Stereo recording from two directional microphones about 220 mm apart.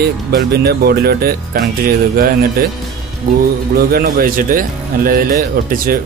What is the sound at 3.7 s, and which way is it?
Speech, 45° right (ahead or behind).